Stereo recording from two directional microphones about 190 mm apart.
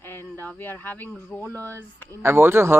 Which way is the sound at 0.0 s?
10° left (ahead or behind).